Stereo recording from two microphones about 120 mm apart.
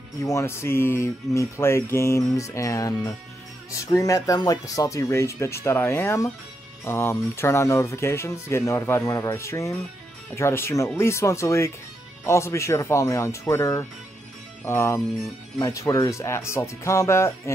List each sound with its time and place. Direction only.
0.2 s music: 25° left (ahead or behind)